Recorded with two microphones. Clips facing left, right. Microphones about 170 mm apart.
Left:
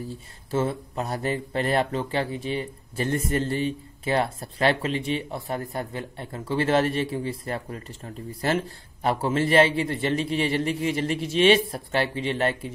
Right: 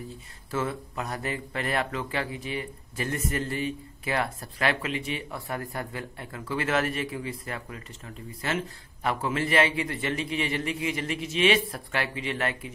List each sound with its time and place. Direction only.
0.5 s a man's voice: 30° left (ahead or behind)